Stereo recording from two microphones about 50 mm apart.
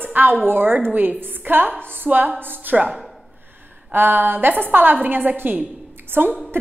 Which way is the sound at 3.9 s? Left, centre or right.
Right.